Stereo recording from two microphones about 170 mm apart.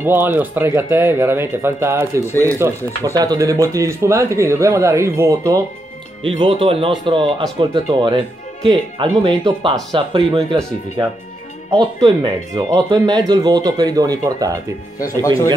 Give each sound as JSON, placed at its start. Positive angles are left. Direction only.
{"t": 0.0, "sound": "speech", "side_deg": -10}
{"t": 6.2, "sound": "speech", "side_deg": -35}
{"t": 11.7, "sound": "speech", "side_deg": -20}
{"t": 15.0, "sound": "speech", "side_deg": 20}